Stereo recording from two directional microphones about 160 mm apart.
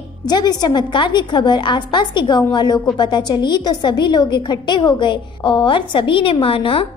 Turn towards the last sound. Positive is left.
turn(degrees=35)  # may be behind; listen again after turning